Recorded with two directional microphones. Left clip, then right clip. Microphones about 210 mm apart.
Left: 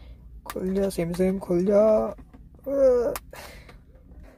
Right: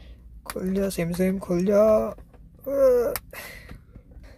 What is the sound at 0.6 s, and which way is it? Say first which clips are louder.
Speech: left 1 dB; centre (ahead or behind).